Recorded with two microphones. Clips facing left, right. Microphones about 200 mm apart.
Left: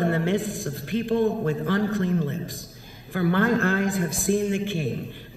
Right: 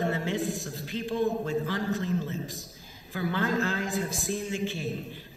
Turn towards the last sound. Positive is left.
turn(degrees=55)  # may be behind; listen again after turning